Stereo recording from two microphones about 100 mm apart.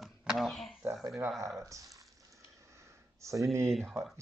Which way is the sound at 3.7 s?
5° left (ahead or behind).